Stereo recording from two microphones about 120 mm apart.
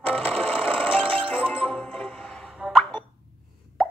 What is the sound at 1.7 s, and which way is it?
Music, 5° left (ahead or behind).